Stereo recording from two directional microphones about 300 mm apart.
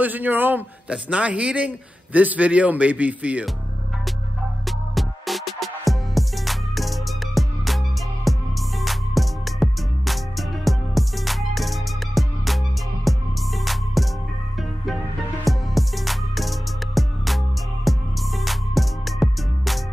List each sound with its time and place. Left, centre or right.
0.0 s a man's voice: centre
4.6 s music: centre
15.4 s music: centre